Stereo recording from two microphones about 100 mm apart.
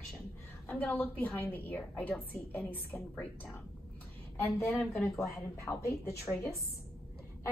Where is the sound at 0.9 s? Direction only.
15° left (ahead or behind).